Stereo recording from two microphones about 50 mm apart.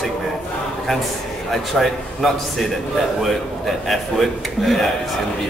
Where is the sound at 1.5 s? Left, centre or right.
Centre.